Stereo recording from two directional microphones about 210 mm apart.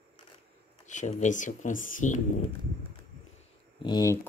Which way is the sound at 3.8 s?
15° left (ahead or behind).